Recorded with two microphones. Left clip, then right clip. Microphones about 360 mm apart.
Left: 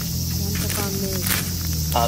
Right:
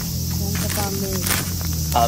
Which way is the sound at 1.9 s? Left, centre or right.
Right.